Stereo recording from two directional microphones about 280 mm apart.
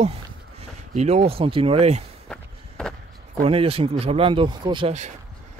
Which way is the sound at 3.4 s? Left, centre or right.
Right.